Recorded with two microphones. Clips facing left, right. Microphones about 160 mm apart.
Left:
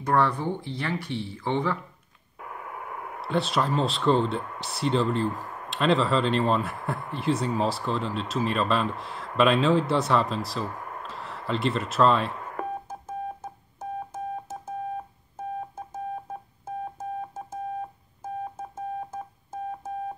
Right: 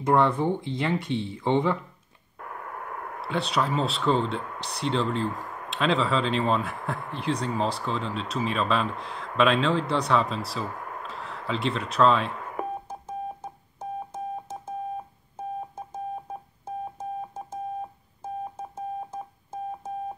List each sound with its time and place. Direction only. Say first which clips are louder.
0.0 s speech: right 2 dB; 20° right (ahead or behind)
2.4 s speech: right 1 dB; 5° left (ahead or behind)
12.8 s keyboard: even; 10° left (ahead or behind)
16.3 s keyboard: even; 10° right (ahead or behind)
18.2 s telephone dialing: even; 10° right (ahead or behind)